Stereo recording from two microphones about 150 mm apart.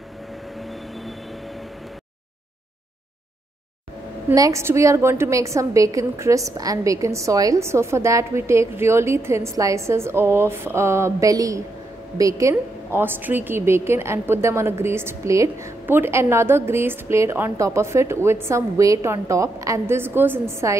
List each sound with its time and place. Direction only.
0.6 s vehicle: centre (ahead or behind)
4.3 s a woman's voice: 20° right (ahead or behind)